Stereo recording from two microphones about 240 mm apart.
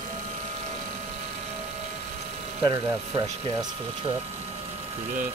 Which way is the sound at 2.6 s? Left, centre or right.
Centre.